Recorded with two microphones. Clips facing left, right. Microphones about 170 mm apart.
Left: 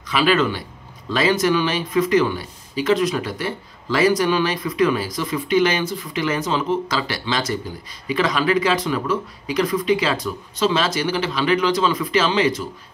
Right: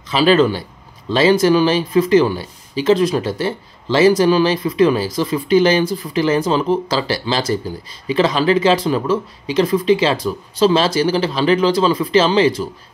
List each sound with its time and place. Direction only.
0.1 s speech: 30° right (ahead or behind)